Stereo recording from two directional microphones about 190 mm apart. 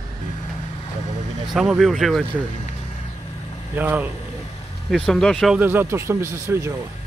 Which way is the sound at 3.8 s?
10° right (ahead or behind).